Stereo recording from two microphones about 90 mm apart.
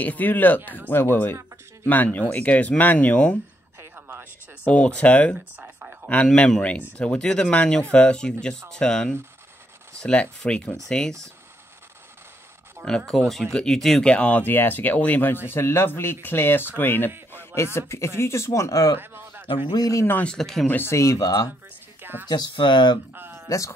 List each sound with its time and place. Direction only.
0.0 s speech: 20° left (ahead or behind)
3.9 s a sound: 20° right (ahead or behind)
4.6 s speech: 10° left (ahead or behind)
5.6 s a sound: 20° right (ahead or behind)
6.3 s speech: 15° left (ahead or behind)
12.8 s speech: 5° left (ahead or behind); by 18.9 s 40° left (ahead or behind)
18.9 s a sound: 25° right (ahead or behind)
19.4 s a man's voice: 70° left (ahead or behind)
19.8 s speech: 40° left (ahead or behind)
20.2 s speech: 5° left (ahead or behind)
20.6 s speech: 20° left (ahead or behind)
20.9 s speech: 35° left (ahead or behind)
22.3 s speech: 55° left (ahead or behind)
23.1 s a sound: 25° right (ahead or behind)